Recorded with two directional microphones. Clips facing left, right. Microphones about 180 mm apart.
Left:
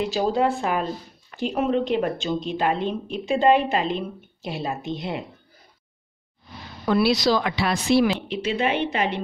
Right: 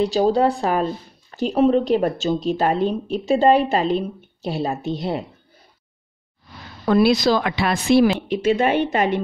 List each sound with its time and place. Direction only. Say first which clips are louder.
0.0 s speech: right 5 dB; 35° right (ahead or behind)
6.9 s speech: right 4 dB; 50° right (ahead or behind)